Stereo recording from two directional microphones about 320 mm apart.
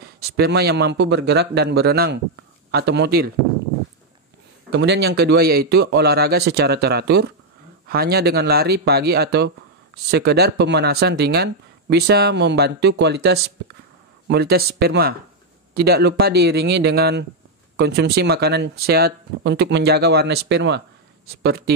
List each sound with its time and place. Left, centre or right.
0.2 s speech: right
4.6 s speech: right